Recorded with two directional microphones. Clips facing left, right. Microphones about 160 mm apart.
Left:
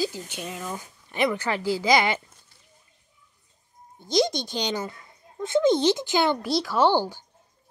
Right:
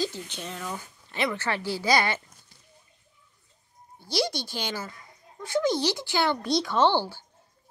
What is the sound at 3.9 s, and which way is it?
Speech, 20° left (ahead or behind).